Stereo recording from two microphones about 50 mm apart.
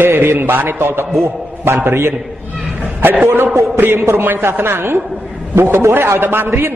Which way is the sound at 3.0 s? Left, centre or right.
Right.